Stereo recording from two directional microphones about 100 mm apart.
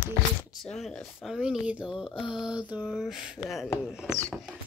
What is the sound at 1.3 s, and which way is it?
Speech, 10° right (ahead or behind).